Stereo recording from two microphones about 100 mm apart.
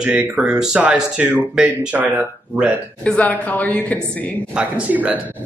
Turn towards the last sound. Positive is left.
turn(degrees=-10)  # may be behind; listen again after turning